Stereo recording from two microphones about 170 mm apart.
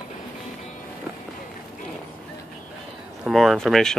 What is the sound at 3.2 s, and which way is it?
Speech, centre (ahead or behind).